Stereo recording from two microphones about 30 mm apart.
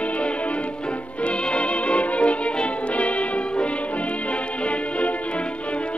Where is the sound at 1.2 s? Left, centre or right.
Left.